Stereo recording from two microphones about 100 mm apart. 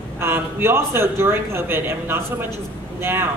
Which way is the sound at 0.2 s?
25° right (ahead or behind).